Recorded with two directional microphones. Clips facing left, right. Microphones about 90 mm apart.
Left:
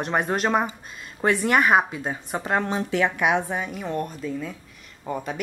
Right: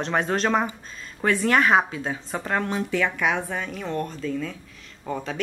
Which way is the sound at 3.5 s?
10° left (ahead or behind).